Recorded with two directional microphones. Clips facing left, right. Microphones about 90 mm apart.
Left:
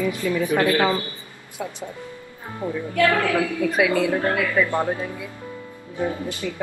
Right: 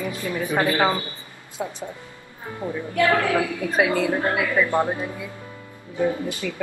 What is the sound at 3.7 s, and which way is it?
Speech, 25° right (ahead or behind).